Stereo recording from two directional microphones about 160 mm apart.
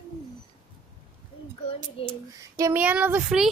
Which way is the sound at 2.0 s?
35° left (ahead or behind).